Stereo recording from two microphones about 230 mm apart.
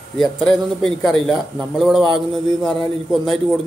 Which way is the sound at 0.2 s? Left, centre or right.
Centre.